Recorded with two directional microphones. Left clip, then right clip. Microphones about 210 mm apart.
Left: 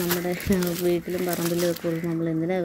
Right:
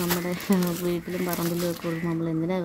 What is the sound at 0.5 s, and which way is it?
Speech, 5° left (ahead or behind).